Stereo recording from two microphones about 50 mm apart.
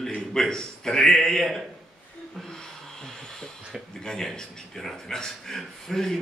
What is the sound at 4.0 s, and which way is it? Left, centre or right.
A man's voice, centre.